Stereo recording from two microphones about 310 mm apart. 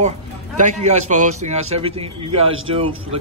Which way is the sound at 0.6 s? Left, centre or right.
Right.